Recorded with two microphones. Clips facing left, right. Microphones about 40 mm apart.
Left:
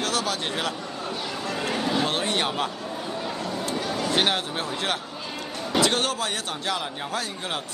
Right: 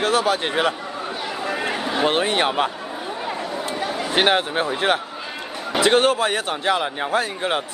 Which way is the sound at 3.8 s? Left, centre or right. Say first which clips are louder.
Right 4 dB; centre.